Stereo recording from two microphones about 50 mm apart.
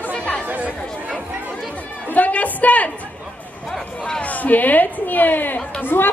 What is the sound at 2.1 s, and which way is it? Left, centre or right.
Speech, left.